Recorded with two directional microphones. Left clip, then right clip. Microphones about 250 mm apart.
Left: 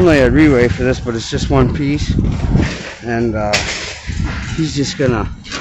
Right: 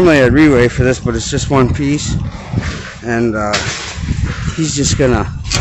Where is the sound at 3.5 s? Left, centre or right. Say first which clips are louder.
Even; left.